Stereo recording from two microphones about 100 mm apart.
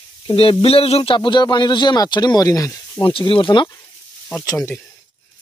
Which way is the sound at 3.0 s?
60° left (ahead or behind).